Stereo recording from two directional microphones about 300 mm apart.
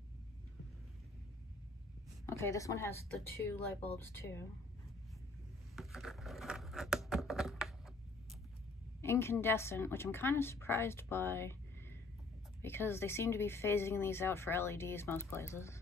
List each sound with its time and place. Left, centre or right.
2.2 s speech: centre
5.8 s a sound: centre
9.0 s speech: centre